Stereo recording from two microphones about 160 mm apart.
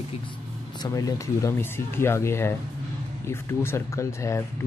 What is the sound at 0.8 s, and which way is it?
Speech, 20° left (ahead or behind).